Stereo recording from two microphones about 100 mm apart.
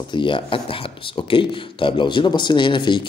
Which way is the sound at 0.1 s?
55° left (ahead or behind).